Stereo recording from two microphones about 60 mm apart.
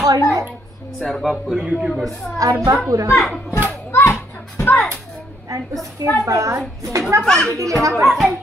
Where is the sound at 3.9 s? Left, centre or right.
Left.